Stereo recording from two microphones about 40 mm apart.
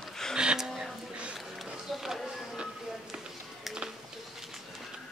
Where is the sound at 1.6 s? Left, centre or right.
Centre.